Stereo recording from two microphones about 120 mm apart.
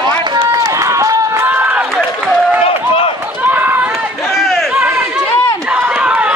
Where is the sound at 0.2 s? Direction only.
35° right (ahead or behind); by 1.9 s 15° right (ahead or behind).